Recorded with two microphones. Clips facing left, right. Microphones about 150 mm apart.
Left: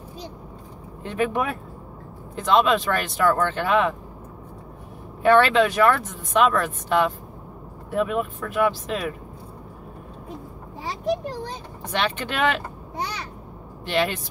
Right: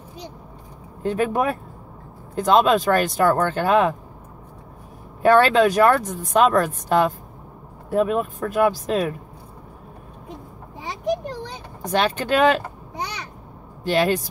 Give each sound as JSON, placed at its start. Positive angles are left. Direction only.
{"t": 1.0, "sound": "speech", "side_deg": -40}
{"t": 5.2, "sound": "speech", "side_deg": -40}
{"t": 11.8, "sound": "speech", "side_deg": -40}
{"t": 13.8, "sound": "speech", "side_deg": -40}